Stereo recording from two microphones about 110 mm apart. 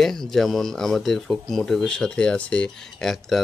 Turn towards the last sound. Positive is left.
turn(degrees=5)  # may be behind; listen again after turning